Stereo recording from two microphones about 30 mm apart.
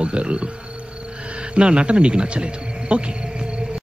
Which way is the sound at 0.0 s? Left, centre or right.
Right.